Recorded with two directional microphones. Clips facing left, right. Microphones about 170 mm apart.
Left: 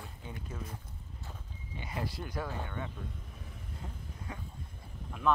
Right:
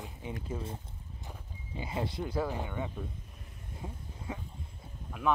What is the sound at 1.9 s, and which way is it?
Speech, 25° right (ahead or behind).